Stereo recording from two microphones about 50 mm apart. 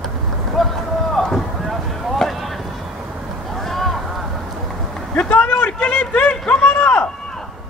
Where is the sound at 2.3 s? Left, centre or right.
Centre.